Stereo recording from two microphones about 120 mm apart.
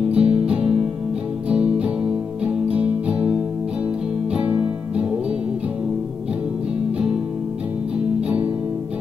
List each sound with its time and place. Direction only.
0.2 s music: 55° right (ahead or behind)
1.5 s music: 10° right (ahead or behind)